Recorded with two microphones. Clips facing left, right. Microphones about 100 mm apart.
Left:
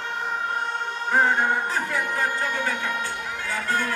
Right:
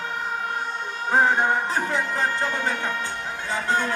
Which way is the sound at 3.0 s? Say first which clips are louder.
Right 1 dB; 20° right (ahead or behind).